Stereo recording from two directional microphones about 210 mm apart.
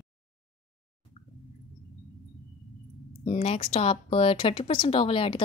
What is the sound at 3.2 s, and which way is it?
Speech, 30° left (ahead or behind).